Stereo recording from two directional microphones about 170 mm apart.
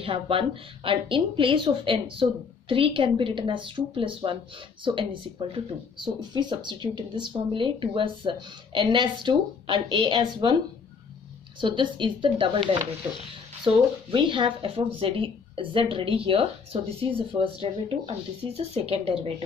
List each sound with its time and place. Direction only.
0.0 s speech: 30° right (ahead or behind)
11.6 s speech: 30° right (ahead or behind)
13.7 s speech: 30° right (ahead or behind)